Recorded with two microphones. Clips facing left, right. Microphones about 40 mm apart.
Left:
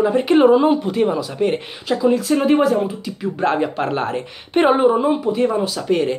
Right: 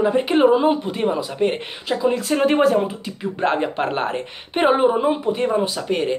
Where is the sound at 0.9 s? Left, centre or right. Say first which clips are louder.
Left 3 dB; right.